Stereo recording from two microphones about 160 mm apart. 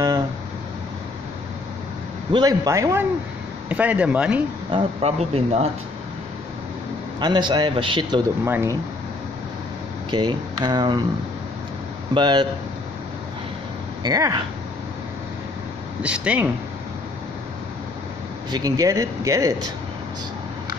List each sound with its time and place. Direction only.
2.3 s a man's voice: 25° right (ahead or behind); by 4.4 s 5° right (ahead or behind)
4.7 s speech: 40° right (ahead or behind)
7.2 s a man's voice: 30° right (ahead or behind)
8.5 s speech: 15° right (ahead or behind)
10.1 s a man's voice: 25° right (ahead or behind)
12.1 s a man's voice: 30° right (ahead or behind)
14.0 s a man's voice: 25° right (ahead or behind)
16.0 s speech: 10° right (ahead or behind)
18.5 s a man's voice: 20° right (ahead or behind)